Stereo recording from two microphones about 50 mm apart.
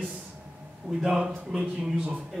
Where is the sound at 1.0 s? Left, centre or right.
Centre.